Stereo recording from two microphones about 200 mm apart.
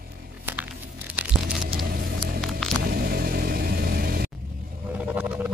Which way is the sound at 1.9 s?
45° right (ahead or behind).